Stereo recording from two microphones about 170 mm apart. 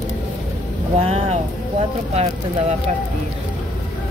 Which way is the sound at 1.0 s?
35° right (ahead or behind).